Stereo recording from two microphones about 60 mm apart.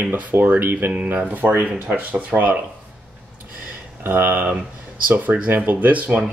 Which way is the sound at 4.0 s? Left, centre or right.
Right.